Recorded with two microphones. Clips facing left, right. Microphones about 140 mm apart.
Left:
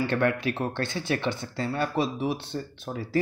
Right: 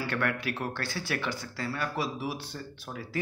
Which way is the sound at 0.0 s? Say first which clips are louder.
Left 6 dB; 25° left (ahead or behind).